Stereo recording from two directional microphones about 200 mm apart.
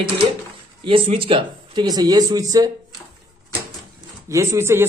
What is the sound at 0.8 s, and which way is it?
A man's voice, 30° right (ahead or behind).